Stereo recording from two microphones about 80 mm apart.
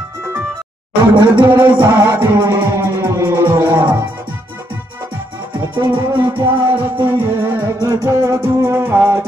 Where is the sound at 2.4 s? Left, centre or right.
Right.